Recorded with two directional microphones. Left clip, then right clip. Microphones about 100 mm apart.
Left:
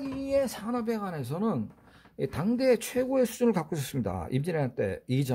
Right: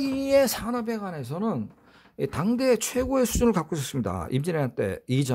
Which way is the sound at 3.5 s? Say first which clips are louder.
Right 3 dB; 25° right (ahead or behind).